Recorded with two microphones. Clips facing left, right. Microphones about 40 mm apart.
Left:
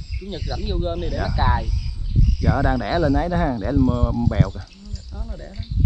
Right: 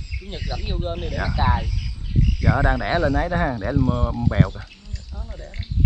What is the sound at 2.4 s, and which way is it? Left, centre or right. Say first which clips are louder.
Speech: even; right.